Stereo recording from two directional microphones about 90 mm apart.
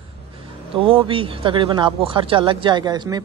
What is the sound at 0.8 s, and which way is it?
Speech, 85° right.